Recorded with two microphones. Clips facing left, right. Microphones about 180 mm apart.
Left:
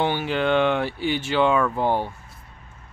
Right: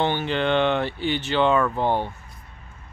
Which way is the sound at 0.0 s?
10° left (ahead or behind).